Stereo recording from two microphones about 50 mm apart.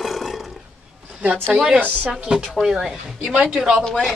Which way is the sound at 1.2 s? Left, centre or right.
Right.